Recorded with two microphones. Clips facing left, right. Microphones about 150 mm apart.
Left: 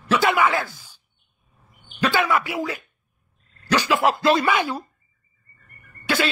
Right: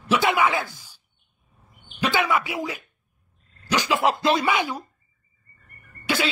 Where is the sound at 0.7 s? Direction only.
10° right (ahead or behind).